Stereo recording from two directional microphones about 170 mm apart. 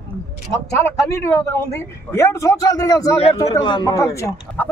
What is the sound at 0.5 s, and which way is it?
A man's voice, 15° left (ahead or behind).